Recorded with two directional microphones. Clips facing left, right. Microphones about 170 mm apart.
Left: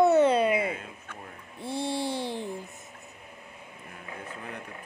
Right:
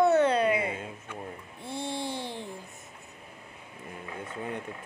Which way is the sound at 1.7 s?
20° right (ahead or behind).